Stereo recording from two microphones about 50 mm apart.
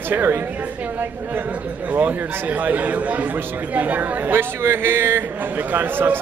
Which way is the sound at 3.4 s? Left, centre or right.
Right.